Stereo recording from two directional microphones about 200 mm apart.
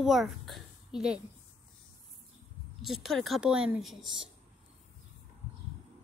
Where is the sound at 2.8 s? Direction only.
Centre (ahead or behind).